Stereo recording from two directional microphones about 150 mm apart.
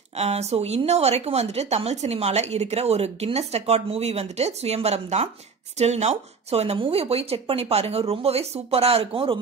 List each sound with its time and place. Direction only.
0.2 s a woman's voice: 45° right (ahead or behind)